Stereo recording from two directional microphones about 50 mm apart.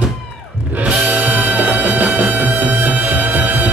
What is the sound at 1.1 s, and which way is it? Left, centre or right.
Music, right.